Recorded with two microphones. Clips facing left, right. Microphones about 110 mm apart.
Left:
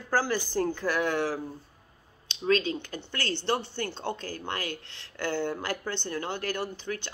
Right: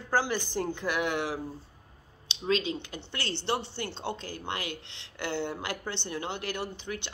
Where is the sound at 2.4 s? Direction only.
20° right (ahead or behind).